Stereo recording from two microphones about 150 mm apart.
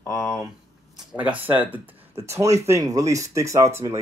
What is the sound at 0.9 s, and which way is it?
Speech, 10° right (ahead or behind).